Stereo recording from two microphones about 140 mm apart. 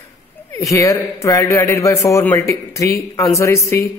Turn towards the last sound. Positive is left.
turn(degrees=20)  # may be behind; listen again after turning